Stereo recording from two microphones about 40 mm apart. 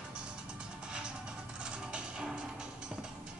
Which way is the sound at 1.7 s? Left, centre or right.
Right.